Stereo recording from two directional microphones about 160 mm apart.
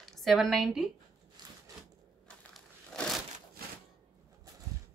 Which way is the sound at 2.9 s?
5° left (ahead or behind).